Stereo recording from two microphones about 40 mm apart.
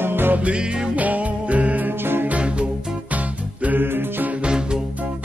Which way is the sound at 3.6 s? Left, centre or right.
Right.